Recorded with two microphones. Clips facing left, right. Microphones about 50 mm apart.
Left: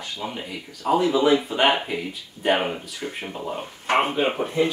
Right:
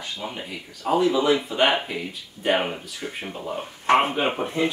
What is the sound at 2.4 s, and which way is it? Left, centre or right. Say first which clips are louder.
Speech: left 2 dB; centre.